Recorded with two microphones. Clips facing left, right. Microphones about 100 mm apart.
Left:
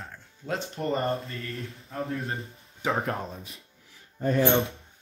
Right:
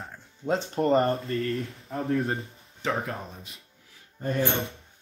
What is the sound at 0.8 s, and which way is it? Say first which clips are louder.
Speech: right 7 dB; 45° right (ahead or behind).